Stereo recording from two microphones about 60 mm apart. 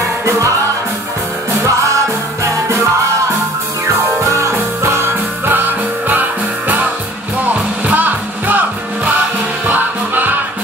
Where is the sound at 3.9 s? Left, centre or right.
Right.